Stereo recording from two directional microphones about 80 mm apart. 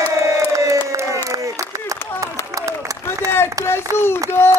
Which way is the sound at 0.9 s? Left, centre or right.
Right.